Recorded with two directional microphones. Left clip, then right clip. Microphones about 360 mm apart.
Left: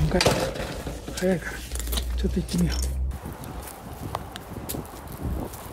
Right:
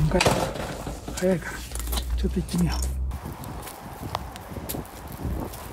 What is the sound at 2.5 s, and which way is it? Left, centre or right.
Speech, centre.